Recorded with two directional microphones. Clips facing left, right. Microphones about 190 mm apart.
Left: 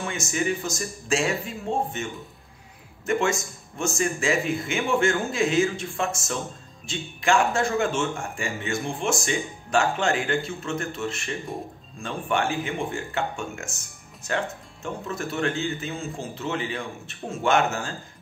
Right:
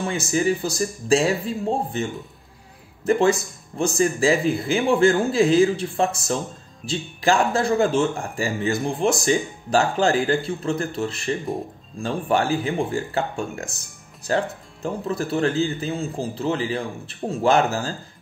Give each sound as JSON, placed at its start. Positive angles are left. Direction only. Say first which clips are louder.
{"t": 0.0, "sound": "speech", "louder": "right 5 dB", "side_deg": -35}
{"t": 3.1, "sound": "speech", "louder": "right 6 dB", "side_deg": -35}